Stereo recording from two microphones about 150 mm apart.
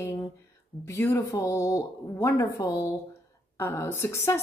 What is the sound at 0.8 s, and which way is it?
Speech, 20° left (ahead or behind).